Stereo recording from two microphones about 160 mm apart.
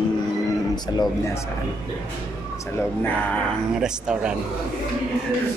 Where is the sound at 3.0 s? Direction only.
10° left (ahead or behind).